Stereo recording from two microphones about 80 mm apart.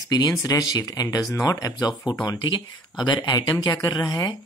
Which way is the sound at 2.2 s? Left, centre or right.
Left.